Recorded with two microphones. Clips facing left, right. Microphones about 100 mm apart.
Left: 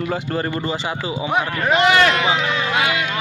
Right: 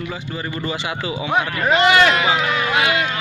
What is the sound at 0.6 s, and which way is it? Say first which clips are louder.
Speech: left 1 dB; 35° left (ahead or behind).